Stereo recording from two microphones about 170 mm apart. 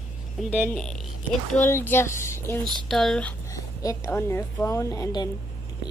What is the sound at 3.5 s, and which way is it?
A woman's voice, 15° left (ahead or behind).